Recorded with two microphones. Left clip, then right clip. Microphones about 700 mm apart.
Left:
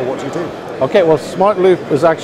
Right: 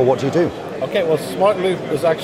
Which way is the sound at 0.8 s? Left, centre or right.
Left.